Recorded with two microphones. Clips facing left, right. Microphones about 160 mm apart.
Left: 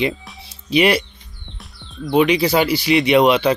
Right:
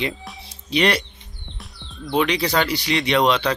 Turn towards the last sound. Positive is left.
turn(degrees=10)  # may be behind; listen again after turning